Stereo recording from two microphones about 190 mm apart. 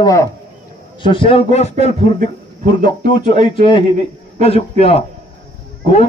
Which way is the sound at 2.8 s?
25° left (ahead or behind).